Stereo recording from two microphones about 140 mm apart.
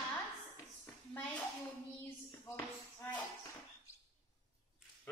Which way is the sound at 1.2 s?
10° left (ahead or behind).